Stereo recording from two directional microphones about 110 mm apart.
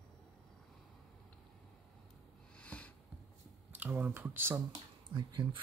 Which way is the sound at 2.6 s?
10° left (ahead or behind).